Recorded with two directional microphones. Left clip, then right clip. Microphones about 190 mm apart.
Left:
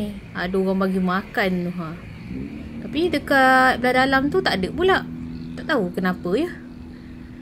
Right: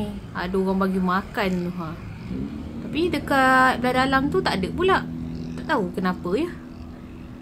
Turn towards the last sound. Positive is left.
turn(degrees=20)  # may be behind; listen again after turning